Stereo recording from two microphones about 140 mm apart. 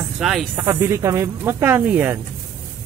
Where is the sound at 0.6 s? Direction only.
20° right (ahead or behind).